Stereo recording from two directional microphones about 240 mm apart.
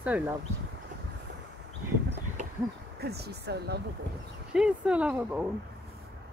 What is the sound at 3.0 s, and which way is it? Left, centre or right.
Speech, right.